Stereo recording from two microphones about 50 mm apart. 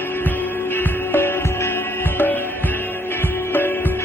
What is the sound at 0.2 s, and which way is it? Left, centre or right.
Music, left.